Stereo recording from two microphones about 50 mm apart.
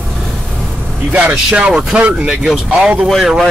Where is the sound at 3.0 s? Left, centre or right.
Centre.